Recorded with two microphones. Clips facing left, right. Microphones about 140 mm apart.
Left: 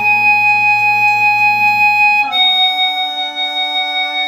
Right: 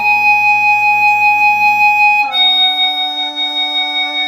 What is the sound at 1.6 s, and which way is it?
Music, 15° right (ahead or behind).